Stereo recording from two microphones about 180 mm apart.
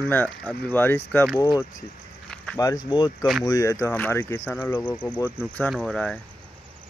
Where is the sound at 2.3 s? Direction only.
5° left (ahead or behind).